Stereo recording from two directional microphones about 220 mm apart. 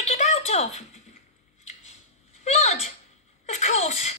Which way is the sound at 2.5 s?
30° left (ahead or behind).